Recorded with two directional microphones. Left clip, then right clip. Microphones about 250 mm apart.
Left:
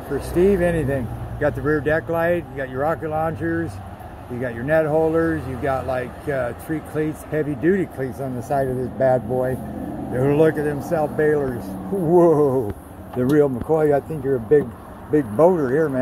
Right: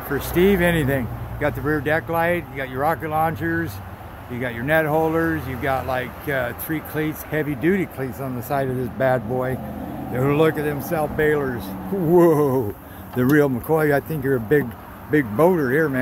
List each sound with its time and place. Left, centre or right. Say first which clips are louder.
0.2 s speech: even; right
1.4 s speech: left 2 dB; centre
12.1 s speech: left 1 dB; right
15.5 s speech: even; right